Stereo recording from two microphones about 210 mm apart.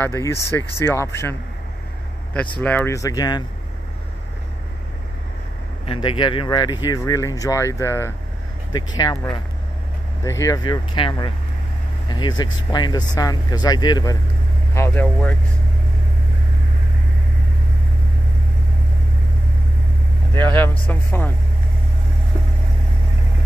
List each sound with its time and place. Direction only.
0.0 s speech: 10° left (ahead or behind)
2.6 s speech: 10° left (ahead or behind)
5.9 s speech: 25° left (ahead or behind)
20.3 s speech: 10° left (ahead or behind)